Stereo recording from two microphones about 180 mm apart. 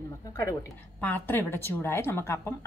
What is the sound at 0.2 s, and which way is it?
A woman's voice, 20° left (ahead or behind).